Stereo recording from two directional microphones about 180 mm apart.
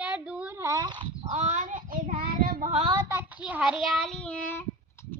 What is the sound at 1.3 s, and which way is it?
Child singing, 40° right (ahead or behind).